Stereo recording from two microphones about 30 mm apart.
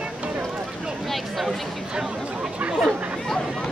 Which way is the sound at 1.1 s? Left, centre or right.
Centre.